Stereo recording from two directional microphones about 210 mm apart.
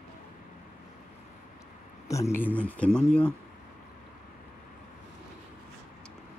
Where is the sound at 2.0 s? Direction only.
15° left (ahead or behind).